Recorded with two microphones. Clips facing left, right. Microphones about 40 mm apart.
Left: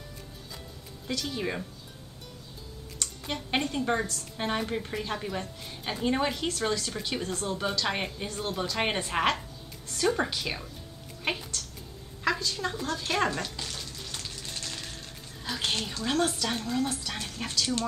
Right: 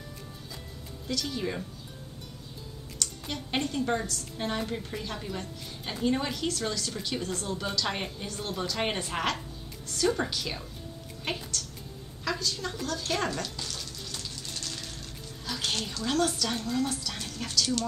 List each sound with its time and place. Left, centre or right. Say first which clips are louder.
1.0 s a woman's voice: even; centre
3.0 s a woman's voice: left 1 dB; centre
14.5 s music: left 1 dB; centre
15.4 s a woman's voice: left 1 dB; centre